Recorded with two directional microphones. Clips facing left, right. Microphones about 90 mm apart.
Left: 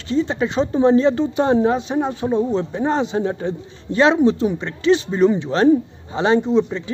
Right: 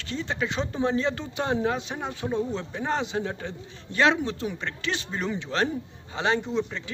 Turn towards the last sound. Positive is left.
turn(degrees=25)  # may be behind; listen again after turning